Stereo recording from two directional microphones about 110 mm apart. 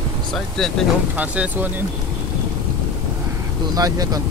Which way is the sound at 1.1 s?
15° right (ahead or behind).